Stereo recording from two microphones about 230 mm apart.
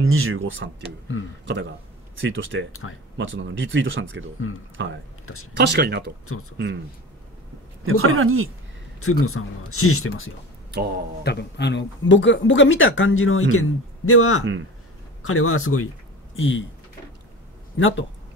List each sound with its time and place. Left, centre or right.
0.0 s speech: right
2.8 s speech: left
3.2 s speech: right
5.2 s speech: left
5.6 s speech: right
7.8 s speech: right
9.0 s speech: left
11.2 s speech: left
17.7 s speech: left